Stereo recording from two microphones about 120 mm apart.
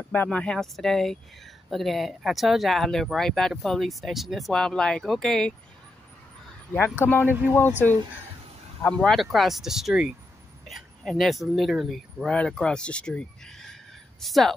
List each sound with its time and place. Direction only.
0.1 s speech: 10° left (ahead or behind)
7.1 s speech: 15° left (ahead or behind)
8.9 s speech: 5° left (ahead or behind)